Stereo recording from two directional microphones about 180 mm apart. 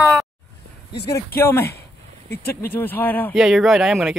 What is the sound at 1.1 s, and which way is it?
Speech, 15° left (ahead or behind).